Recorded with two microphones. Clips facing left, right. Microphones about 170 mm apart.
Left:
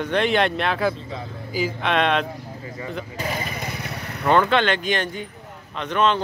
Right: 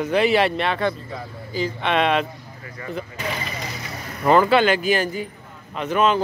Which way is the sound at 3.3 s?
50° left (ahead or behind).